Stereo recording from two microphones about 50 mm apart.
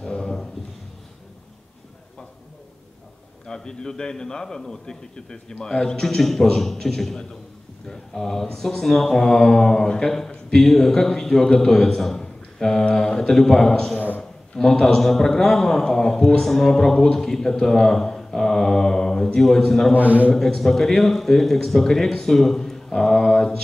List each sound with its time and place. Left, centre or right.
0.0 s a sound: centre
3.4 s a man's voice: centre
13.9 s a sound: left
14.5 s a man's voice: centre
20.0 s a man's voice: right
20.3 s a man's voice: centre